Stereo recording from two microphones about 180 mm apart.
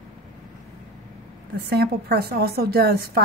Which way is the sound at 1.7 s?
60° right (ahead or behind).